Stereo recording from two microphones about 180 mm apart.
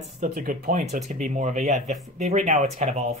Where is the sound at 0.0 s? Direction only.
50° right (ahead or behind).